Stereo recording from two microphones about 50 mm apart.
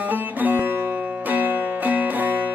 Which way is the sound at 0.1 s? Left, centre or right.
Right.